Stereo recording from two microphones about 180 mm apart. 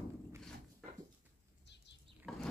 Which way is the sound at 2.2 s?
Centre (ahead or behind).